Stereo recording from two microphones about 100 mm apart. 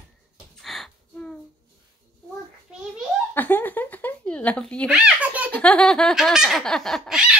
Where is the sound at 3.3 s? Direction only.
20° left (ahead or behind).